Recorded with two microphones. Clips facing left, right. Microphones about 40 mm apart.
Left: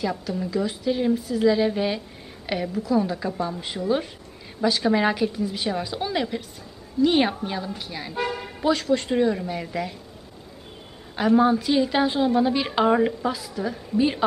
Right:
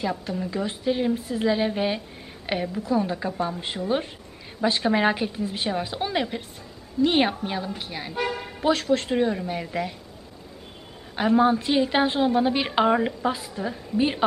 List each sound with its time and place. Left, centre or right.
0.1 s a woman's voice: centre
0.5 s a woman's voice: right
5.7 s a woman's voice: centre
8.6 s a woman's voice: centre
11.1 s a woman's voice: centre
13.2 s a woman's voice: right